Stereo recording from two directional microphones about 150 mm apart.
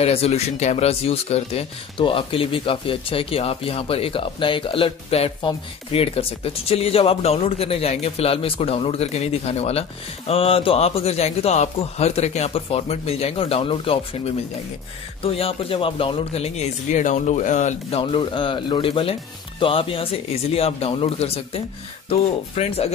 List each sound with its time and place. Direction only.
0.0 s speech: 45° left (ahead or behind)